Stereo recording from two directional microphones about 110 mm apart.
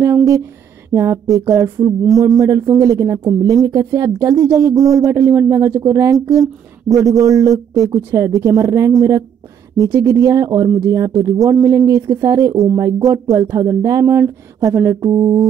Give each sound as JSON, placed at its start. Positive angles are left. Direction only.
{"t": 0.0, "sound": "speech", "side_deg": -30}